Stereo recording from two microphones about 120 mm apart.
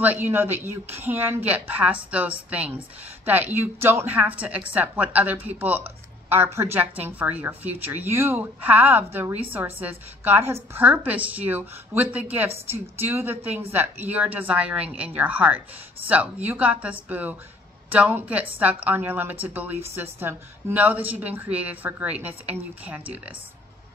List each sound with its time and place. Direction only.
0.0 s speech: 15° right (ahead or behind)